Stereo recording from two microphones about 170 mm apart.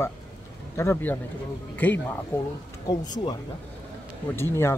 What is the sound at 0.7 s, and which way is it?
Speech, 15° left (ahead or behind).